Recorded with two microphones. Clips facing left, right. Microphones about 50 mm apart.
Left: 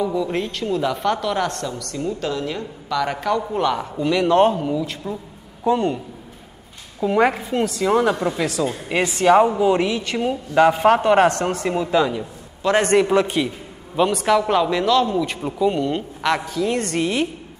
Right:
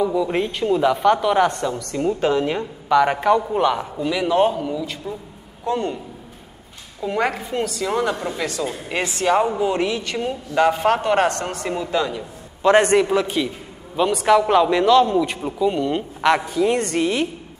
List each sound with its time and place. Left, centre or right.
0.0 s a woman's voice: centre
7.0 s a woman's voice: centre
12.6 s speech: centre
12.9 s a woman's voice: centre
14.1 s speech: centre
15.4 s a woman's voice: centre
15.8 s speech: centre
16.9 s a woman's voice: centre